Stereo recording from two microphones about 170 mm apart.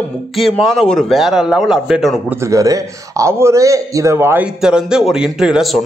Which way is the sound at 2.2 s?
20° right (ahead or behind).